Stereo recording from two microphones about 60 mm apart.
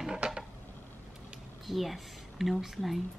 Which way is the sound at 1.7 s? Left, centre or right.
Centre.